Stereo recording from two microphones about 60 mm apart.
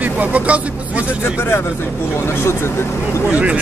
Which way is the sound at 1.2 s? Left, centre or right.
Left.